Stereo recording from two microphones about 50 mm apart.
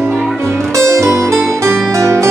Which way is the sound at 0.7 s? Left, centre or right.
Right.